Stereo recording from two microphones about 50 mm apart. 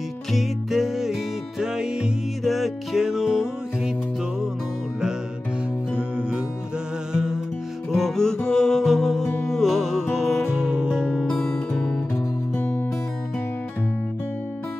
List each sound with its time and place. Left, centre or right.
0.3 s music: centre
2.4 s music: centre
5.9 s music: right
7.9 s music: centre
8.8 s music: centre
10.6 s music: centre
11.2 s music: centre
12.5 s music: left